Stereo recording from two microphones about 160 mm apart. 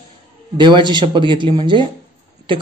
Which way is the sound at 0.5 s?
30° right (ahead or behind).